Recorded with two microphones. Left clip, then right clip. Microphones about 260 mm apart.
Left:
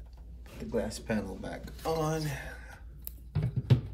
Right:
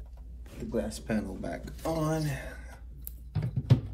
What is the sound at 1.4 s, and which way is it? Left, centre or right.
Speech, centre.